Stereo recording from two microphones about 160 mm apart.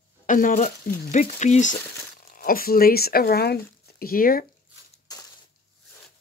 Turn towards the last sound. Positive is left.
turn(degrees=65)  # may be behind; listen again after turning